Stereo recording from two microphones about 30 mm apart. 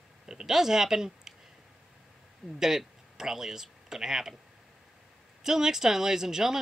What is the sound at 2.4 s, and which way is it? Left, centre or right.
Speech, centre.